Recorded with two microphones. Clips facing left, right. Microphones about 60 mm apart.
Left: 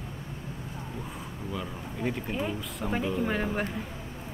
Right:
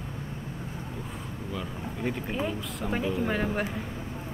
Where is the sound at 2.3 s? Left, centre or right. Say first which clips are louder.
Right 1 dB; centre.